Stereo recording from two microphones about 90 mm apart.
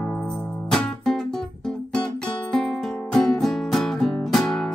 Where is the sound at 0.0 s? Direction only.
15° left (ahead or behind).